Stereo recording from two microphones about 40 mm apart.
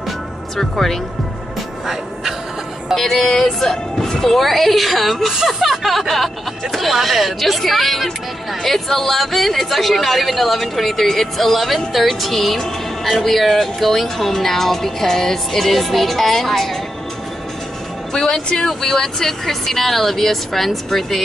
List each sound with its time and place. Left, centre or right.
0.6 s speech: centre
2.9 s speech: centre
18.1 s speech: centre